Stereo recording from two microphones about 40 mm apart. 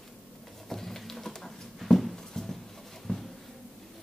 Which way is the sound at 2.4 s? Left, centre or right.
Centre.